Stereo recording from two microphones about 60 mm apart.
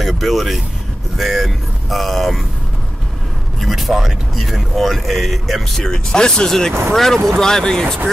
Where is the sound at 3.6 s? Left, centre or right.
Centre.